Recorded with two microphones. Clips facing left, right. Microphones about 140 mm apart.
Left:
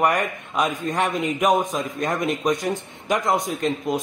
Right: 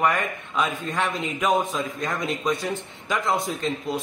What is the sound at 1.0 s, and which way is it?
A woman's voice, 15° left (ahead or behind).